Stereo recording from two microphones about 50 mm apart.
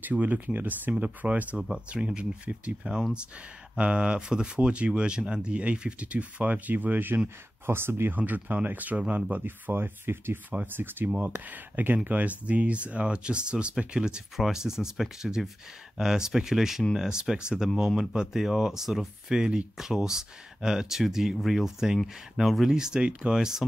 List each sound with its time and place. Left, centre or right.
0.0 s speech: right
1.9 s speech: centre; by 7.2 s right
7.6 s speech: right
8.2 s speech: right
9.7 s speech: right
11.1 s speech: right; by 22.7 s centre
22.7 s speech: centre